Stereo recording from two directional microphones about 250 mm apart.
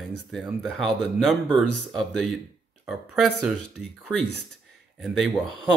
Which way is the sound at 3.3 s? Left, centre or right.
Left.